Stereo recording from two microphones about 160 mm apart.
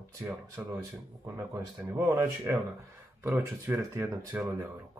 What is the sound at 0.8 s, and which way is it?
Speech, 15° right (ahead or behind).